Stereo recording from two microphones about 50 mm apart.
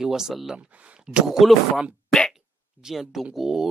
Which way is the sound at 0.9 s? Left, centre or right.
Centre.